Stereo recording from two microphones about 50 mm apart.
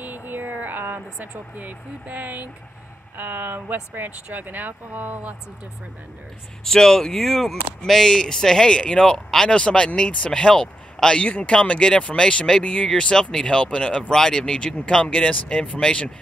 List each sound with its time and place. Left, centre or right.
0.0 s vehicle: right
3.2 s speech: right
3.9 s speech: right
6.6 s speech: centre